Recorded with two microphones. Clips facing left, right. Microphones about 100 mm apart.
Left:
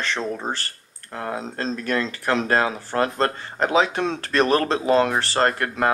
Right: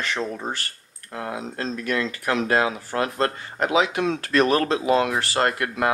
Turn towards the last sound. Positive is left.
turn(degrees=35)  # may be behind; listen again after turning